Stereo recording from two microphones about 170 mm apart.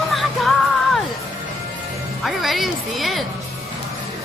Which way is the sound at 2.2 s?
Centre (ahead or behind).